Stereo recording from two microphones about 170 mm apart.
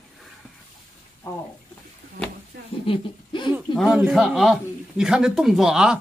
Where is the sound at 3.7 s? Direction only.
5° right (ahead or behind).